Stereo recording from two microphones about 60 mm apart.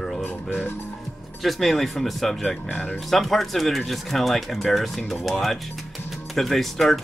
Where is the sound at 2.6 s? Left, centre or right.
Left.